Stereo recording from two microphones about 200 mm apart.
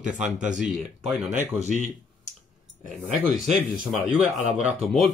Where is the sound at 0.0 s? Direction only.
40° right (ahead or behind).